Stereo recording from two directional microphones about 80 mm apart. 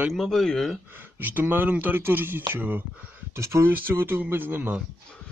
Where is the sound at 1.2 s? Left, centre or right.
Right.